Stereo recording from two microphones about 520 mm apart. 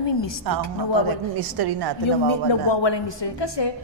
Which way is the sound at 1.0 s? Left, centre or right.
Right.